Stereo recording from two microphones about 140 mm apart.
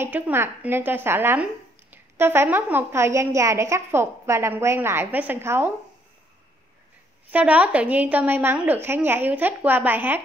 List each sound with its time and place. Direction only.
0.0 s speech: 15° right (ahead or behind)
7.2 s speech: 10° right (ahead or behind)